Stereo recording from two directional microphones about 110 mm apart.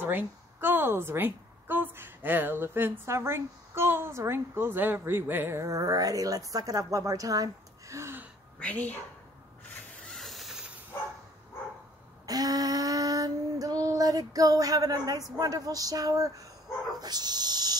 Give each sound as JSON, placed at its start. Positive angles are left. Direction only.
{"t": 0.0, "sound": "a woman's voice", "side_deg": -20}
{"t": 7.9, "sound": "gasp", "side_deg": -20}
{"t": 8.5, "sound": "speech", "side_deg": 15}
{"t": 10.0, "sound": "a sound", "side_deg": 0}
{"t": 12.3, "sound": "female singing", "side_deg": -35}
{"t": 15.3, "sound": "speech", "side_deg": -35}